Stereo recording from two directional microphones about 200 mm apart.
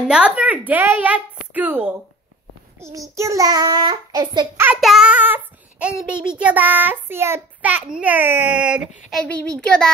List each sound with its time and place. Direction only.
0.1 s a child's voice: 5° right (ahead or behind)
2.8 s child singing: 15° right (ahead or behind)
4.6 s a child's voice: 5° right (ahead or behind)
9.1 s a child's voice: 5° left (ahead or behind)